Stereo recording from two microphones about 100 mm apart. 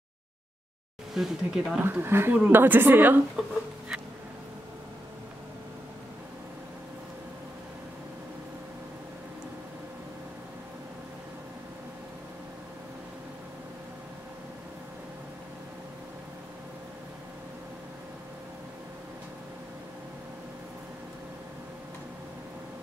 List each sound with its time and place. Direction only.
1.1 s speech: 5° right (ahead or behind)
1.8 s a woman's voice: 20° right (ahead or behind)
3.4 s speech: centre (ahead or behind)